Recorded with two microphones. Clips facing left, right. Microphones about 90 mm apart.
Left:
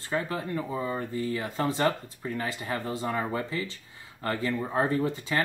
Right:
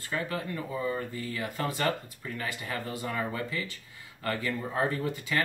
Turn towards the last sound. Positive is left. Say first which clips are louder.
# left 3 dB
turn(degrees=25)  # may be behind; listen again after turning